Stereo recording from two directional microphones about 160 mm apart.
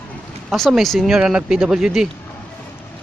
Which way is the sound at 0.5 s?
Centre (ahead or behind).